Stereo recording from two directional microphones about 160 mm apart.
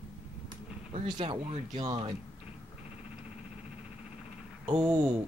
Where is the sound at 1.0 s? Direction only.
30° right (ahead or behind).